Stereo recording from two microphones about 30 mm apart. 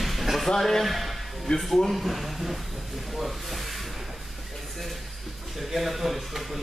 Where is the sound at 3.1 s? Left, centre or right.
Centre.